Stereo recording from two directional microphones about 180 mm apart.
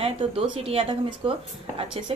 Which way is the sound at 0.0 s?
30° right (ahead or behind).